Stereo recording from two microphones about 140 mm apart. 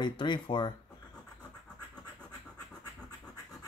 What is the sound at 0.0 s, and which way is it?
Speech, 35° left (ahead or behind).